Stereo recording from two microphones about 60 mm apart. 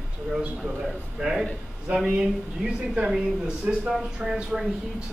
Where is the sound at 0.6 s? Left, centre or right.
Centre.